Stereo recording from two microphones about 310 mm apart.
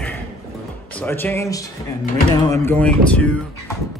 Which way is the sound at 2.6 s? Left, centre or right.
Centre.